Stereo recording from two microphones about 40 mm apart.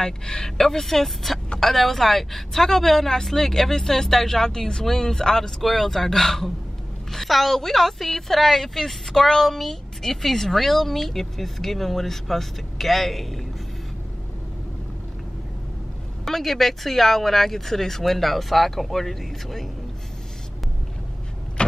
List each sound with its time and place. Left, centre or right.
0.0 s a woman's voice: centre
16.3 s a woman's voice: centre
21.6 s vehicle: left